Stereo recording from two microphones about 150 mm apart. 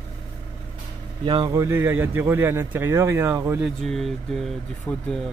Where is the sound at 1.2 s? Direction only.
30° right (ahead or behind).